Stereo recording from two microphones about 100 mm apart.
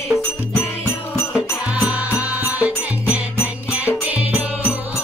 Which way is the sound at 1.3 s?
10° right (ahead or behind).